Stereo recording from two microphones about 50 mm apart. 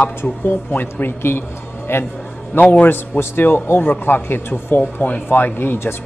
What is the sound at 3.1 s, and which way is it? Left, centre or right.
A man's voice, left.